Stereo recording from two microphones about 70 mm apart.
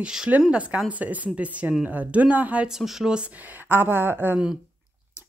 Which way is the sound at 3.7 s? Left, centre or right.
Right.